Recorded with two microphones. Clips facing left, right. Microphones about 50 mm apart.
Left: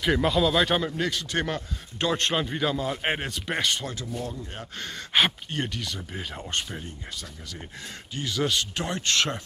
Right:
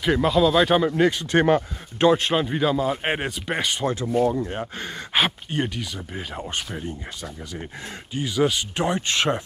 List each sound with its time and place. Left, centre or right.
0.0 s speech: centre
0.8 s speech: right
2.1 s speech: centre
3.8 s speech: right
4.1 s speech: right
4.5 s speech: centre
8.1 s speech: centre